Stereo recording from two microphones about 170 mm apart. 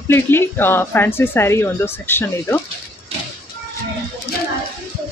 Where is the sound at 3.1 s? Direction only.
35° right (ahead or behind).